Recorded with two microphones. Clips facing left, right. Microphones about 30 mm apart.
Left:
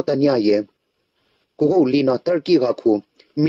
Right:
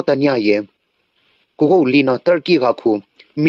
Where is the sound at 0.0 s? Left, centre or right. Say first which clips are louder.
Right 2 dB; right.